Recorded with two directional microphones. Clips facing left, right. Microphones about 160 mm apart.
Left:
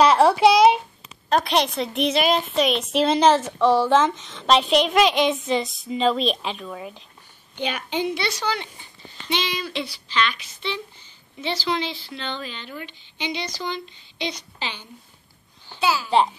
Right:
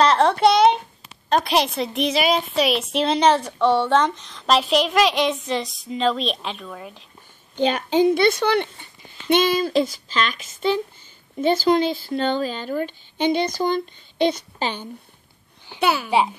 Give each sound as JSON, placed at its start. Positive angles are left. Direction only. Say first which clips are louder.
{"t": 0.0, "sound": "a sound", "louder": "left 1 dB", "side_deg": 5}
{"t": 1.3, "sound": "a woman's voice", "louder": "right 1 dB", "side_deg": 0}
{"t": 7.5, "sound": "speech", "louder": "right 8 dB", "side_deg": -40}
{"t": 15.8, "sound": "a child's voice", "louder": "right 2 dB", "side_deg": -60}